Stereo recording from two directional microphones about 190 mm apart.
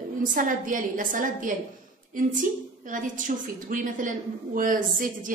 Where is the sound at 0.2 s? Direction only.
45° right (ahead or behind).